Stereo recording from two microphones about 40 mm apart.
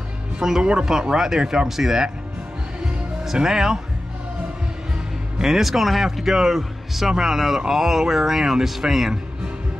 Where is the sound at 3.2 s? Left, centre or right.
Centre.